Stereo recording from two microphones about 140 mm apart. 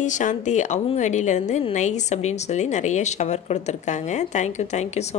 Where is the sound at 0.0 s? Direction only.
60° left (ahead or behind).